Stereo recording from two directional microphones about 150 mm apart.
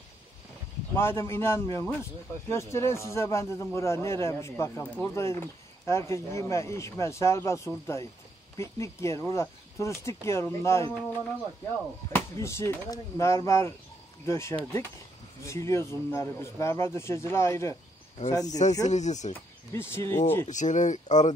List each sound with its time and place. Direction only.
0.9 s a man's voice: 15° left (ahead or behind)
18.9 s speech: 50° left (ahead or behind)
19.7 s a man's voice: 15° left (ahead or behind)
20.4 s speech: 55° left (ahead or behind)